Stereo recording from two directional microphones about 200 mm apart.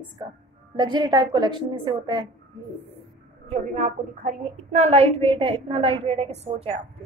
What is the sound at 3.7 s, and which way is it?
A woman's voice, 35° right (ahead or behind).